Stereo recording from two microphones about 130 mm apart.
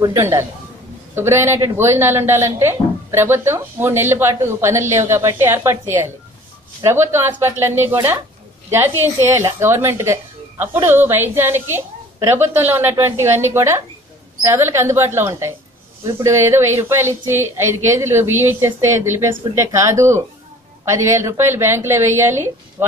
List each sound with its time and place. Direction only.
0.1 s a woman's voice: 20° right (ahead or behind)